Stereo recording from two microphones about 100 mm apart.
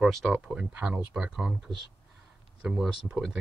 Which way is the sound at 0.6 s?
10° right (ahead or behind).